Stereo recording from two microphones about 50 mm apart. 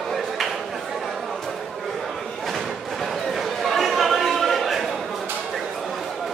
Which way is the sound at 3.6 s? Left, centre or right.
Centre.